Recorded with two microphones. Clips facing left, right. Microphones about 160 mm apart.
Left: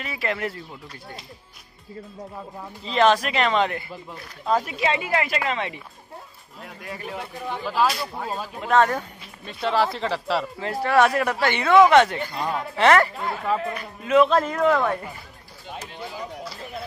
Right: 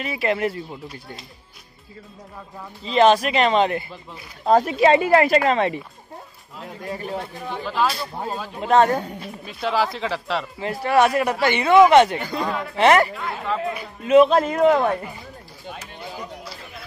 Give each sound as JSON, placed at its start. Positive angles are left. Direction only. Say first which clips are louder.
{"t": 0.0, "sound": "a man's voice", "louder": "right 5 dB", "side_deg": -20}
{"t": 2.9, "sound": "a man's voice", "louder": "right 3 dB", "side_deg": -20}
{"t": 4.5, "sound": "speech", "louder": "right 7 dB", "side_deg": -45}
{"t": 6.6, "sound": "a man's voice", "louder": "right 5 dB", "side_deg": -30}
{"t": 7.6, "sound": "speech", "louder": "even", "side_deg": 5}
{"t": 8.5, "sound": "a man's voice", "louder": "right 3 dB", "side_deg": -25}
{"t": 9.5, "sound": "speech", "louder": "even", "side_deg": 0}
{"t": 10.6, "sound": "a man's voice", "louder": "right 2 dB", "side_deg": -10}